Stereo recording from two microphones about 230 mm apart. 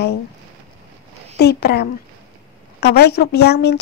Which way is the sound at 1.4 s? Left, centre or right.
Left.